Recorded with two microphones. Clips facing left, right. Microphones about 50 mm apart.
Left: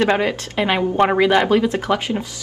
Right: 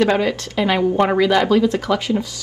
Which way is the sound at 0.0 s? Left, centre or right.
Left.